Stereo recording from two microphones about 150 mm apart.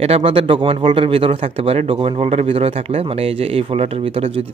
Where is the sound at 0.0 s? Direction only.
40° right (ahead or behind).